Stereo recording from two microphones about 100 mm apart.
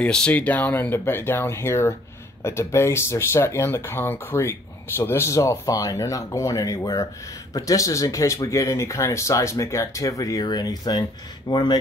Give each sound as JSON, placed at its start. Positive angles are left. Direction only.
{"t": 0.0, "sound": "speech", "side_deg": 10}